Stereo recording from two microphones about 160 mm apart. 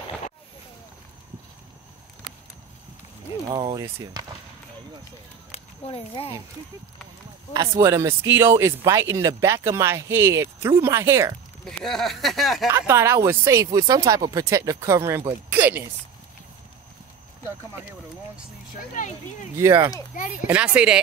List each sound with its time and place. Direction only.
3.4 s speech: 30° right (ahead or behind)
5.5 s a sound: 35° left (ahead or behind)
7.5 s speech: 20° right (ahead or behind)
11.6 s speech: centre (ahead or behind)
12.6 s speech: 15° right (ahead or behind)
18.9 s speech: 50° left (ahead or behind)
19.5 s speech: 15° right (ahead or behind)